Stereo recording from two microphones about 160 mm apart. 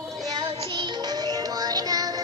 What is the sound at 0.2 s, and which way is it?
Music, 25° right (ahead or behind).